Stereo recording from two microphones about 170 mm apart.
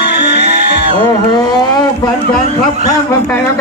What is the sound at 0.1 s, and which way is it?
Music, 75° left (ahead or behind).